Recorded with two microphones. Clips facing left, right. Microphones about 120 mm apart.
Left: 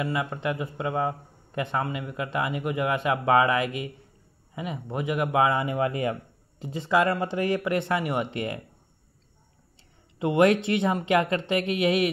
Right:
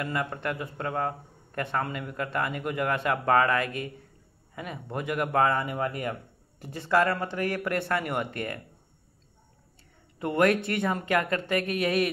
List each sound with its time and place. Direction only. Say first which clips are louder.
0.0 s a man's voice: left 3 dB; 10° left (ahead or behind)
10.1 s a man's voice: left 3 dB; 20° left (ahead or behind)